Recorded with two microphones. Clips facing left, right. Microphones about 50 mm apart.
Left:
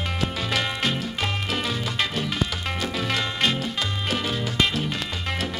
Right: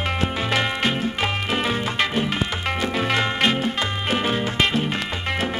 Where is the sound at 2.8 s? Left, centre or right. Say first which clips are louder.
Right 5 dB; right.